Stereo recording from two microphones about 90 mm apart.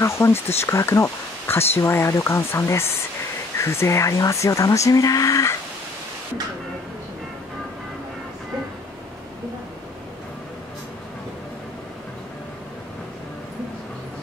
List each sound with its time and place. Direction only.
0.0 s speech: 30° left (ahead or behind)